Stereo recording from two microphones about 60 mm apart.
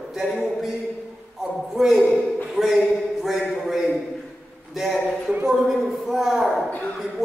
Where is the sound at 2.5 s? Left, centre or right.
Centre.